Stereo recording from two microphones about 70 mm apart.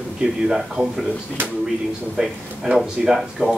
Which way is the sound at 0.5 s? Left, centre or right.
Centre.